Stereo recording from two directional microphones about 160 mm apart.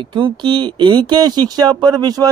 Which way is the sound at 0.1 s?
30° right (ahead or behind).